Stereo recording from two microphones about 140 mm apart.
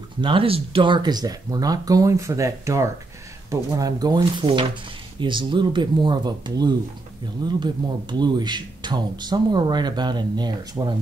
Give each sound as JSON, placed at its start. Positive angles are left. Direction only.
{"t": 0.2, "sound": "speech", "side_deg": -40}